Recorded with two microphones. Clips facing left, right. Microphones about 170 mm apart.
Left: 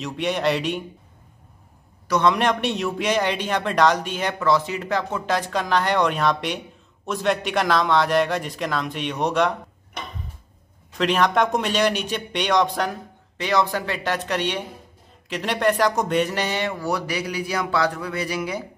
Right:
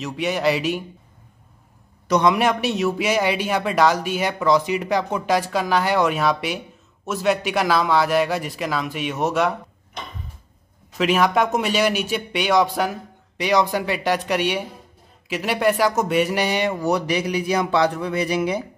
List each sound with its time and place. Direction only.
0.0 s a man's voice: 5° right (ahead or behind)
2.0 s a man's voice: 15° right (ahead or behind)
11.0 s a man's voice: 5° right (ahead or behind); by 18.6 s 20° right (ahead or behind)